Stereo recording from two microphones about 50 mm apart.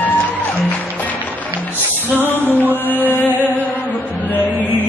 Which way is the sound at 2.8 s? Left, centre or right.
Left.